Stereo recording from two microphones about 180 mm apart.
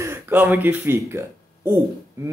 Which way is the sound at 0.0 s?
10° right (ahead or behind).